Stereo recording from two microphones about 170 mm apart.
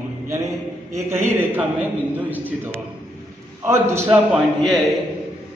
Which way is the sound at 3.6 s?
15° right (ahead or behind).